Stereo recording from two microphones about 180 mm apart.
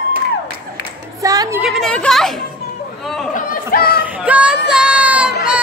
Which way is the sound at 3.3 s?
50° left (ahead or behind).